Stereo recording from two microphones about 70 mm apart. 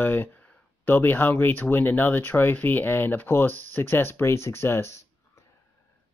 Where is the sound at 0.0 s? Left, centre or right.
Left.